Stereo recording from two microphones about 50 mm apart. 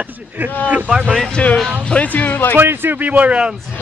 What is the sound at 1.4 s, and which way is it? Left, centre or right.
Speech, left.